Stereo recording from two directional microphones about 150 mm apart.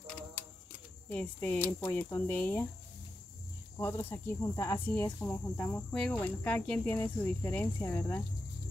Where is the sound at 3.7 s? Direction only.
15° left (ahead or behind).